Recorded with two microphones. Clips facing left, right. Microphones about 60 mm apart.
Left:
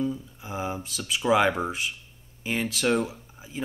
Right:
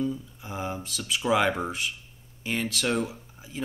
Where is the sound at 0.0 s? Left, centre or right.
Centre.